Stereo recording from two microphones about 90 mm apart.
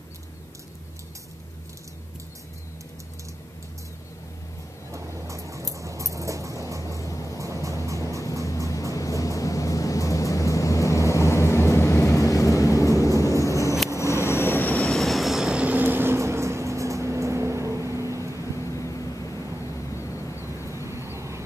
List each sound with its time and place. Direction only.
4.9 s a sound: 35° right (ahead or behind)
7.3 s music: 35° right (ahead or behind)
8.9 s vehicle: 40° left (ahead or behind); by 18.5 s 35° right (ahead or behind)
18.6 s vehicle: 35° left (ahead or behind)
20.7 s vehicle: 30° right (ahead or behind)